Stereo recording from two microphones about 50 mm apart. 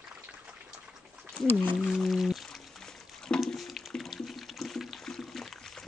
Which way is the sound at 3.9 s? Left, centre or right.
Centre.